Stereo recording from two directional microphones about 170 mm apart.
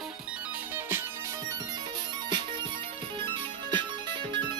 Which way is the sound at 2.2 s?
25° right (ahead or behind).